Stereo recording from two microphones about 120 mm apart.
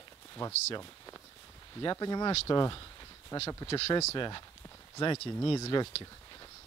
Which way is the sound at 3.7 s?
50° left (ahead or behind).